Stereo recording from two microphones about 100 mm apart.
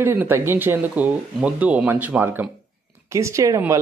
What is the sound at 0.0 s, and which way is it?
Speech, 20° right (ahead or behind).